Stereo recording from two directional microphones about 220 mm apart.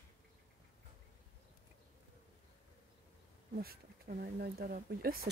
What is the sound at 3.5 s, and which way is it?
Speech, 45° right (ahead or behind).